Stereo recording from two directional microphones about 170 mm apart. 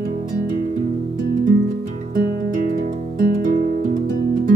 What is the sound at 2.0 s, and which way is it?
Music, 55° right (ahead or behind).